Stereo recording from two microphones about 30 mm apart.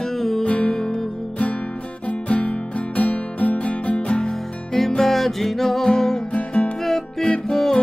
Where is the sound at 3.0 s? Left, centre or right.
Left.